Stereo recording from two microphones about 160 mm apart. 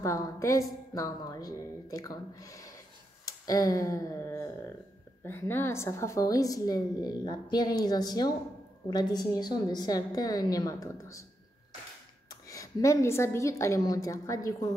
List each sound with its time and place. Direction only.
0.0 s a woman's voice: 20° left (ahead or behind)
12.3 s a woman's voice: 20° left (ahead or behind)